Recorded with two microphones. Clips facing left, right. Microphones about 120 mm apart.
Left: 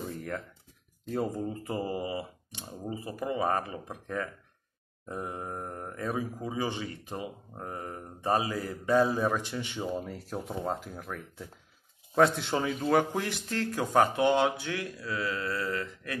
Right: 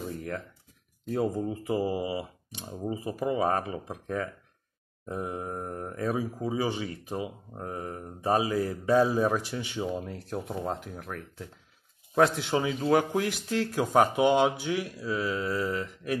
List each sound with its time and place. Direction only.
1.0 s speech: 5° right (ahead or behind)
5.5 s speech: centre (ahead or behind)
6.1 s speech: 15° right (ahead or behind)
9.8 s speech: centre (ahead or behind); by 16.2 s 20° right (ahead or behind)